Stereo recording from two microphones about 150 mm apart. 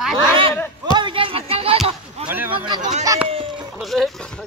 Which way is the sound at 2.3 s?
10° right (ahead or behind).